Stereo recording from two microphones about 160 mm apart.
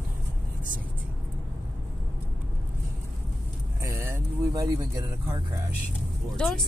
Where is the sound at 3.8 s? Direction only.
20° right (ahead or behind).